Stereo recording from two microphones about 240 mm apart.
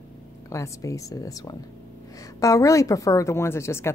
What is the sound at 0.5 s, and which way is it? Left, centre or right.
Speech, centre.